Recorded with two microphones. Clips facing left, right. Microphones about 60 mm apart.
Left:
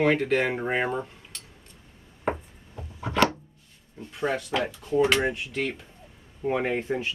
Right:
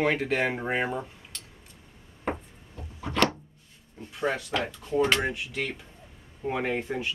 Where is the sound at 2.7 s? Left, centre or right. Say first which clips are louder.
Left 2 dB; centre.